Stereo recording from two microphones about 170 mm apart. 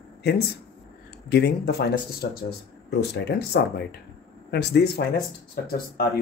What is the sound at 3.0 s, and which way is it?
Speech, 80° left.